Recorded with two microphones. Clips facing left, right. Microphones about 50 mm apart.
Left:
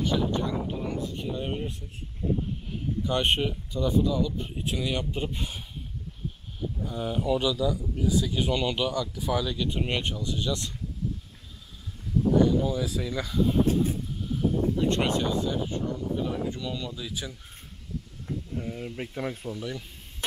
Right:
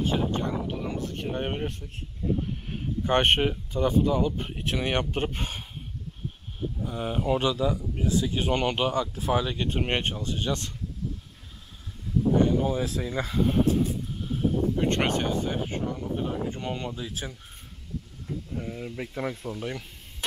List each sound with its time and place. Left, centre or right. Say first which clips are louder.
0.0 s a sound: even; right
2.7 s speech: right 4 dB; right
6.8 s speech: even; right
12.4 s speech: left 1 dB; right
14.3 s a sound: even; right
15.9 s speech: left 1 dB; right
18.5 s speech: right 1 dB; centre
19.5 s speech: right 1 dB; right